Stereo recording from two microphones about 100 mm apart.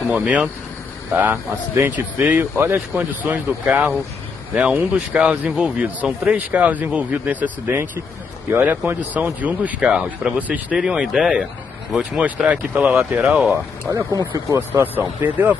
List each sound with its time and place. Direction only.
0.1 s speech: 10° right (ahead or behind)
14.7 s speech: 20° right (ahead or behind)